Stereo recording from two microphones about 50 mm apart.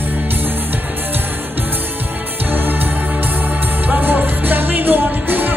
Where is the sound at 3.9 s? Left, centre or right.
Right.